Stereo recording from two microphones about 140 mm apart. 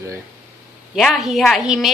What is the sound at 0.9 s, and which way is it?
Speech, centre (ahead or behind).